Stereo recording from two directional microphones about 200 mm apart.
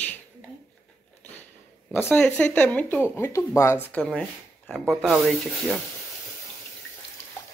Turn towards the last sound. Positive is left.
turn(degrees=0)  # may be behind; listen again after turning